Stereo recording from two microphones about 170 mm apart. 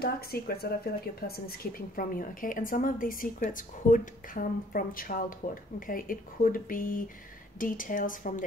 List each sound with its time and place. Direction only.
0.0 s a woman's voice: 65° left (ahead or behind)